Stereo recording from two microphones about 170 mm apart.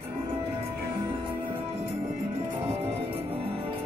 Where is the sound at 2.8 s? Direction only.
35° right (ahead or behind).